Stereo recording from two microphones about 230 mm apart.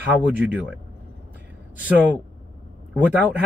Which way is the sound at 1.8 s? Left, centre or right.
Centre.